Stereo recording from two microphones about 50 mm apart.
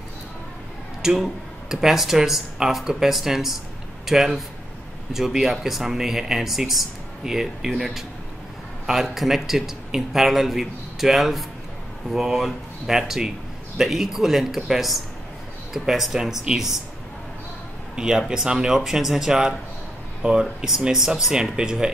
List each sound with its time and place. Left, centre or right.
1.0 s speech: centre
17.9 s speech: centre